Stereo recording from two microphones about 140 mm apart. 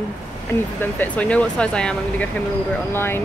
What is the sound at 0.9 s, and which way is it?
Speech, 10° left (ahead or behind).